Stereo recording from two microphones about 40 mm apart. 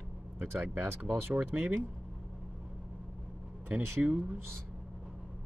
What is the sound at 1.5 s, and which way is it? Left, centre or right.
Speech, right.